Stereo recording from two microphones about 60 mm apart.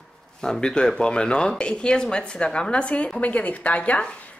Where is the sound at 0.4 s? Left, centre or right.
Centre.